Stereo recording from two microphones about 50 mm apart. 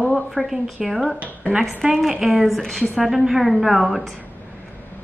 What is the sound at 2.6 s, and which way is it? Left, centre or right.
Speech, centre.